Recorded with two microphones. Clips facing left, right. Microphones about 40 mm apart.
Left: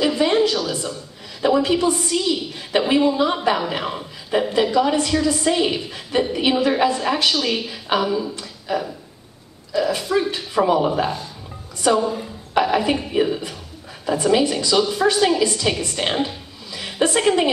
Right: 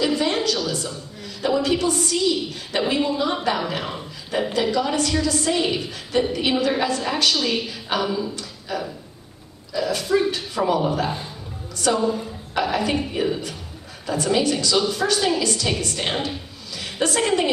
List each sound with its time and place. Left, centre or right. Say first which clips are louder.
0.0 s a sound: left 4 dB; centre
1.4 s a woman's voice: left 3 dB; centre
11.8 s a woman's voice: left 2 dB; centre
16.7 s chuckle: left 4 dB; left
17.2 s a woman's voice: left 2 dB; centre